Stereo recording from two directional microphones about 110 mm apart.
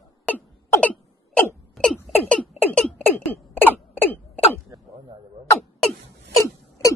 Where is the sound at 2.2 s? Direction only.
10° left (ahead or behind).